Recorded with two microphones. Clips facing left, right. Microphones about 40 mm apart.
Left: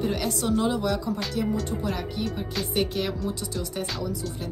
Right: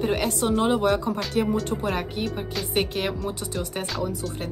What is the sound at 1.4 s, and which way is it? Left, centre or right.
Speech, right.